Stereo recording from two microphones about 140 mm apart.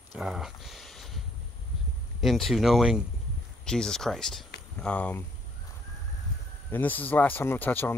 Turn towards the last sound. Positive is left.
turn(degrees=15)  # may be behind; listen again after turning